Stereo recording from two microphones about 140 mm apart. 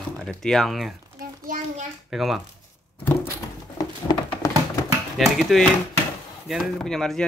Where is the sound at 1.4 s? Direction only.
75° right (ahead or behind).